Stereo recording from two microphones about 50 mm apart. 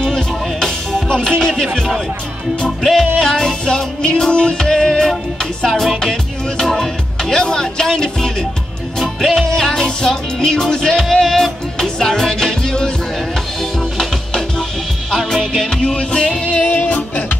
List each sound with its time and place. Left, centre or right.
0.0 s music: centre
2.8 s music: centre
16.6 s music: left